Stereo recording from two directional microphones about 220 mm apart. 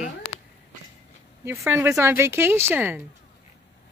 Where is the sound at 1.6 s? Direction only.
10° right (ahead or behind).